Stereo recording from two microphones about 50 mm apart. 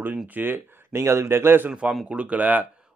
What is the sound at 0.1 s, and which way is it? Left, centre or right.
Speech, right.